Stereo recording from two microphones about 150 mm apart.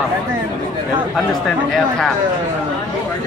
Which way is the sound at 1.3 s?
5° left (ahead or behind).